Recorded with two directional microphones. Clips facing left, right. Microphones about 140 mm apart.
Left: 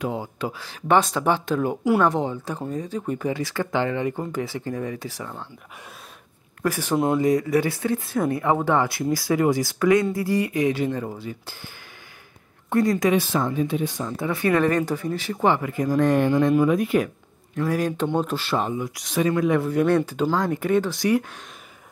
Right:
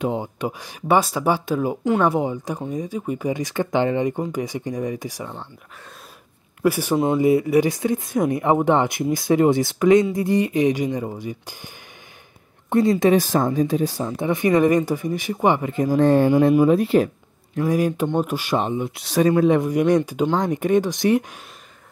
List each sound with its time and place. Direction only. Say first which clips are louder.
0.0 s speech: right 3 dB; 20° right (ahead or behind)
6.6 s speech: right 3 dB; 10° right (ahead or behind)
12.6 s a sound: right 3 dB; 20° right (ahead or behind)
13.0 s speech: right 4 dB; 40° right (ahead or behind)
14.0 s speech: right 3 dB; 20° right (ahead or behind)
17.6 s speech: right 3 dB; 15° right (ahead or behind); by 19.6 s 30° right (ahead or behind)
19.6 s speech: right 2 dB; 15° right (ahead or behind)